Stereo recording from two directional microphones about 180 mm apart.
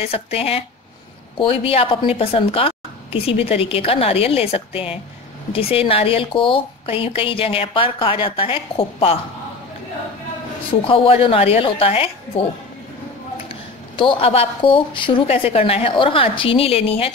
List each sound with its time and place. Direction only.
0.0 s a woman's voice: 35° left (ahead or behind)
10.7 s a woman's voice: 30° left (ahead or behind)
13.5 s a woman's voice: 30° left (ahead or behind)